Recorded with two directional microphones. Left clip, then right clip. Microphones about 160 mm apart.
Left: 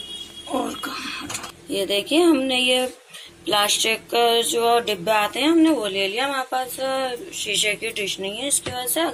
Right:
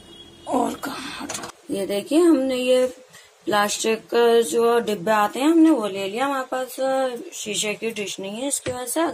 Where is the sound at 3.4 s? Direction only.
50° right (ahead or behind).